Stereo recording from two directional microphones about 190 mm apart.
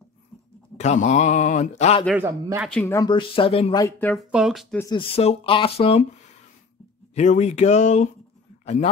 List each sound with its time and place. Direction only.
0.7 s speech: 40° left (ahead or behind)
2.1 s speech: 10° right (ahead or behind)
2.7 s speech: 15° left (ahead or behind); by 3.7 s 30° left (ahead or behind)
3.7 s speech: 15° left (ahead or behind)
4.1 s speech: centre (ahead or behind)
4.9 s speech: 30° left (ahead or behind)
7.2 s speech: 35° left (ahead or behind)